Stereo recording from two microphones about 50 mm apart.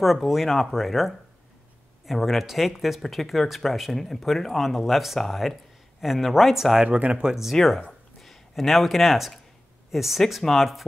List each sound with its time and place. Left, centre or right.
0.0 s speech: centre
6.8 s speech: right
7.5 s speech: centre